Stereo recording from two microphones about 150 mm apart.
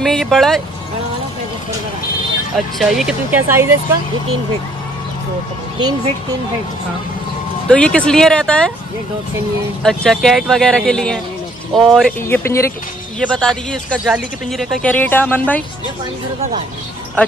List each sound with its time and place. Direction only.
0.0 s speech: centre (ahead or behind)
2.5 s speech: centre (ahead or behind)
3.3 s speech: 15° right (ahead or behind)
7.6 s speech: 5° left (ahead or behind)
9.8 s speech: 5° left (ahead or behind)
12.3 s speech: 15° left (ahead or behind)
13.2 s speech: 5° left (ahead or behind)